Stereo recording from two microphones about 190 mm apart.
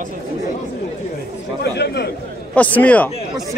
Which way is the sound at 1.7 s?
60° left (ahead or behind).